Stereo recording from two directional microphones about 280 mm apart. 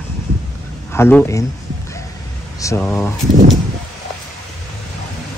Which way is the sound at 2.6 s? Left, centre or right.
Centre.